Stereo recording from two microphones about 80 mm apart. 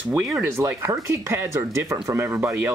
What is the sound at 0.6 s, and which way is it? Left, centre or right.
Speech, right.